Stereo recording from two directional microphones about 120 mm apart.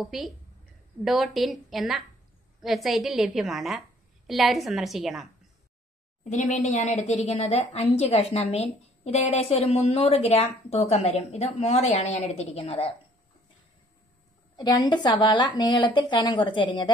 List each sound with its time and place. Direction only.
0.0 s a woman's voice: centre (ahead or behind)
6.2 s a woman's voice: 90° left; by 12.9 s 50° left (ahead or behind)
14.6 s a woman's voice: 35° left (ahead or behind)